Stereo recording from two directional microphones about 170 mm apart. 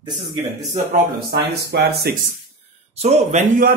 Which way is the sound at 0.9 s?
65° right (ahead or behind).